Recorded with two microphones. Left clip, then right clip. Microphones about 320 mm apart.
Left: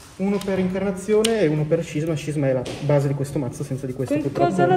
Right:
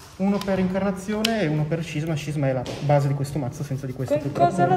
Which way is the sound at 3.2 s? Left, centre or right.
Right.